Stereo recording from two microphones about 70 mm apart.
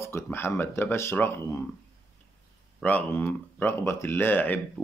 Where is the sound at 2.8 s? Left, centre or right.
Left.